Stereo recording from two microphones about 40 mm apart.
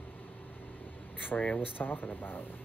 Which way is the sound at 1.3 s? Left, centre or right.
Left.